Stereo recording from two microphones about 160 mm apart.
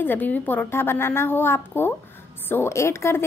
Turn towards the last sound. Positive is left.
turn(degrees=15)  # may be behind; listen again after turning